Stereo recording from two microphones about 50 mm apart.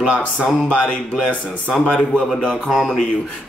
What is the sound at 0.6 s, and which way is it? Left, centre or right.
Speech, centre.